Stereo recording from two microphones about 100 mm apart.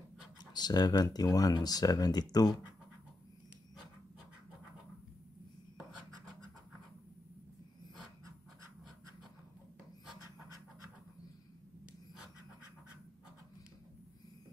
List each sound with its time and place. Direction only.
0.4 s speech: 45° left (ahead or behind)